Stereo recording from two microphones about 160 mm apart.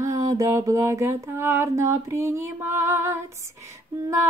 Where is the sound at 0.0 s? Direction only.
20° right (ahead or behind).